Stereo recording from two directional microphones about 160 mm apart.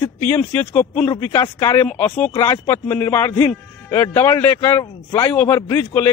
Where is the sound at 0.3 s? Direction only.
10° left (ahead or behind).